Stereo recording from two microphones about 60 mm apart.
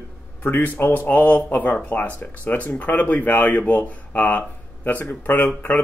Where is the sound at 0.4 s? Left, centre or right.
Left.